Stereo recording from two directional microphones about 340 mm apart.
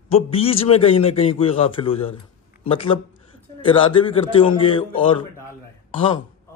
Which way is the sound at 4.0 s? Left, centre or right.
Centre.